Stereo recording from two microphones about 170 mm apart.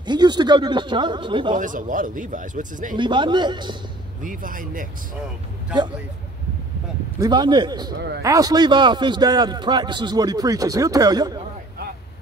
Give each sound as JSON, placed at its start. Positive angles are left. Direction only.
{"t": 0.0, "sound": "a man's voice", "side_deg": -25}
{"t": 1.6, "sound": "speech", "side_deg": -50}
{"t": 3.0, "sound": "a man's voice", "side_deg": -25}
{"t": 4.2, "sound": "speech", "side_deg": -50}
{"t": 7.2, "sound": "a man's voice", "side_deg": -25}